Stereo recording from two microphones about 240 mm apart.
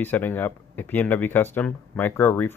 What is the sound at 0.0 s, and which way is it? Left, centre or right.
Speech, centre.